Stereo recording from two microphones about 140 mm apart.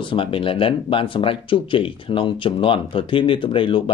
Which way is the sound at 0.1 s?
40° left (ahead or behind).